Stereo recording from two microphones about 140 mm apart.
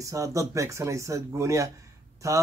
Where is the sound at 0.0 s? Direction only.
25° right (ahead or behind).